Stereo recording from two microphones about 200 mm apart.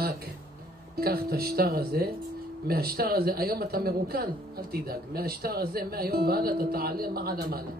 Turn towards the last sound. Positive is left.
turn(degrees=-50)  # may be behind; listen again after turning